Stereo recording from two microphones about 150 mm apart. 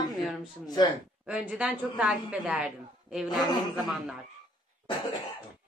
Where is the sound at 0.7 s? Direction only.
25° left (ahead or behind).